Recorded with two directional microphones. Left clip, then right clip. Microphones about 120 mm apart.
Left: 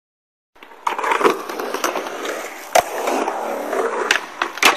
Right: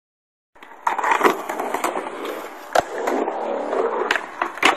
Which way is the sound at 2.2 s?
60° right (ahead or behind).